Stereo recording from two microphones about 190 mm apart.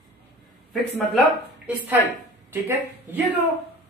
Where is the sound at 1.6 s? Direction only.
10° right (ahead or behind).